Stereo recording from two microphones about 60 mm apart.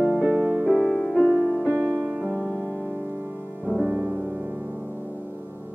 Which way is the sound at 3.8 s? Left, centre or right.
Right.